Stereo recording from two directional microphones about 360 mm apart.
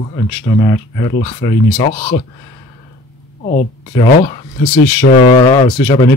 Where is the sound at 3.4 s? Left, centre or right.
Centre.